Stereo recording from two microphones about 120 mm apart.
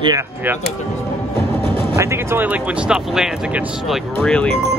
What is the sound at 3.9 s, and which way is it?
Speech, 5° left (ahead or behind).